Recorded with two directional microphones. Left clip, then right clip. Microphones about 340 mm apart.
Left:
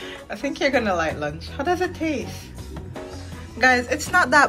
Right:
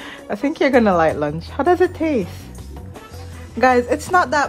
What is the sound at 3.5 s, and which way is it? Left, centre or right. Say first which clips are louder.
Speech: right 3 dB; right.